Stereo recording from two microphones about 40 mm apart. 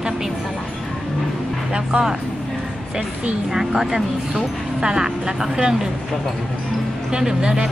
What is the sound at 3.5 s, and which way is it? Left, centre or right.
Speech, centre.